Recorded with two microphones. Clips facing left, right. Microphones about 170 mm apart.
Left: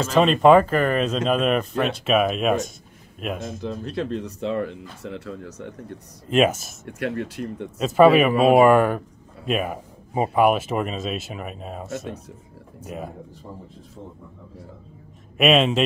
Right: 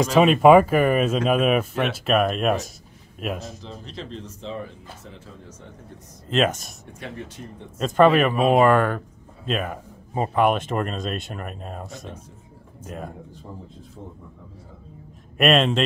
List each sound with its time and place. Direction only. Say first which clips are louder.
0.0 s speech: right 1 dB; 10° right (ahead or behind)
3.6 s speech: left 9 dB; 65° left (ahead or behind)
6.3 s speech: left 3 dB; 5° left (ahead or behind)
6.9 s speech: left 9 dB; 70° left (ahead or behind)
7.8 s speech: left 2 dB; 5° left (ahead or behind)
15.3 s speech: left 1 dB; centre (ahead or behind)